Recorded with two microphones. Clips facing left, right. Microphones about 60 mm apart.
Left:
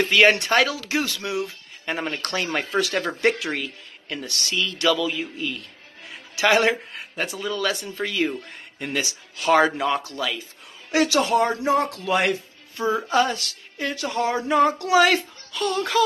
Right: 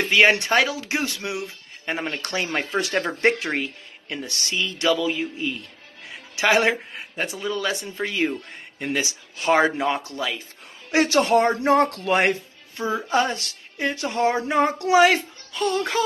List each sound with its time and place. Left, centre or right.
0.0 s speech: centre
0.7 s speech: right
1.9 s a man's voice: centre
10.9 s a man's voice: right
11.6 s speech: right
12.2 s a sound: right
13.1 s speech: right